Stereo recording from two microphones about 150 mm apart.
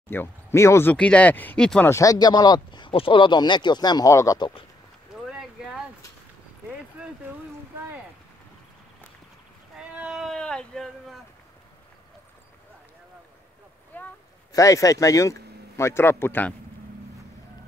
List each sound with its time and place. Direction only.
0.1 s speech: 15° left (ahead or behind)
1.9 s speech: 20° left (ahead or behind)
5.1 s clip-clop: 5° right (ahead or behind)
9.8 s a sound: 5° right (ahead or behind)
13.9 s a sound: 10° left (ahead or behind)
14.5 s speech: 20° left (ahead or behind)